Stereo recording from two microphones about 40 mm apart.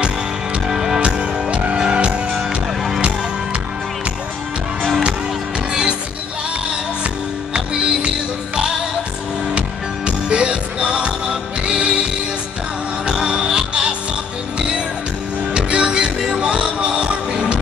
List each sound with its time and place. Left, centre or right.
0.7 s music: centre
1.0 s music: right
2.3 s music: centre
5.7 s music: right
9.5 s music: right
13.0 s music: right
15.5 s music: right